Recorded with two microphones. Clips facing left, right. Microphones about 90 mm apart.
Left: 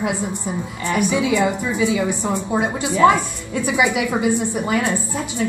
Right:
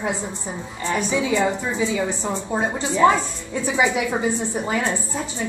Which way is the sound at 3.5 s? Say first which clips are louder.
Left 2 dB; 65° left (ahead or behind).